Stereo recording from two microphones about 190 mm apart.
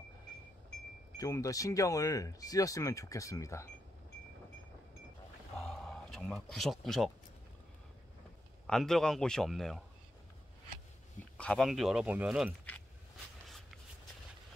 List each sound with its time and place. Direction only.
1.1 s speech: 15° left (ahead or behind)
5.6 s a sound: centre (ahead or behind)
8.6 s a man's voice: 5° left (ahead or behind)
11.3 s a man's voice: 5° left (ahead or behind)